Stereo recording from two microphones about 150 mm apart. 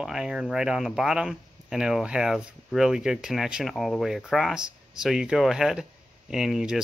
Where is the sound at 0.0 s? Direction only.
5° right (ahead or behind).